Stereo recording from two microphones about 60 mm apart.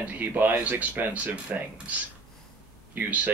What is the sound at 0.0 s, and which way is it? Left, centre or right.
Speech, right.